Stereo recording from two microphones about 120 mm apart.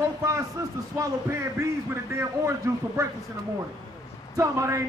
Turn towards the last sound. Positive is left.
turn(degrees=-25)  # may be behind; listen again after turning